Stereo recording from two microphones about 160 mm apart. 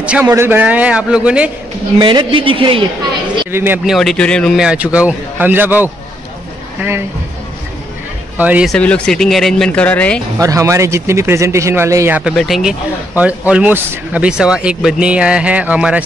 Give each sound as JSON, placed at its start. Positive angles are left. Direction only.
{"t": 0.0, "sound": "a man's voice", "side_deg": -10}
{"t": 2.0, "sound": "a woman's voice", "side_deg": -30}
{"t": 3.5, "sound": "a man's voice", "side_deg": -10}
{"t": 3.9, "sound": "a man's voice", "side_deg": 0}
{"t": 8.4, "sound": "a man's voice", "side_deg": -10}
{"t": 8.6, "sound": "a man's voice", "side_deg": 5}
{"t": 10.4, "sound": "a man's voice", "side_deg": -20}
{"t": 12.2, "sound": "a man's voice", "side_deg": 0}